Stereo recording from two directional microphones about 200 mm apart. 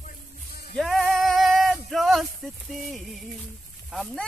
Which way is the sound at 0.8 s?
Centre (ahead or behind).